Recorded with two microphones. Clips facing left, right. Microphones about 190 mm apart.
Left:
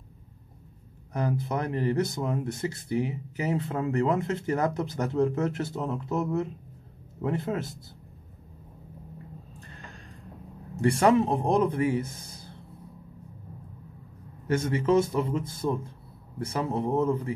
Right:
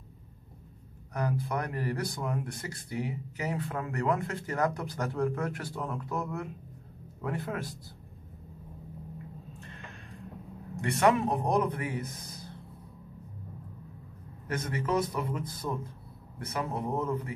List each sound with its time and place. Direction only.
1.1 s speech: 25° left (ahead or behind)
10.8 s speech: 30° left (ahead or behind)
14.5 s speech: 25° left (ahead or behind)